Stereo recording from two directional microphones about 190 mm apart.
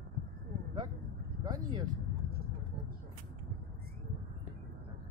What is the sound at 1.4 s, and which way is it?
Speech, 20° right (ahead or behind).